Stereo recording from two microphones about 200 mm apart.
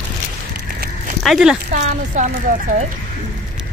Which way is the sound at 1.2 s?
Centre (ahead or behind).